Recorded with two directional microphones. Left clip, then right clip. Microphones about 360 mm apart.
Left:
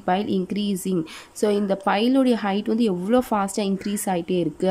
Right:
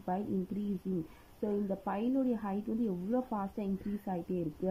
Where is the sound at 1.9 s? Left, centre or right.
Centre.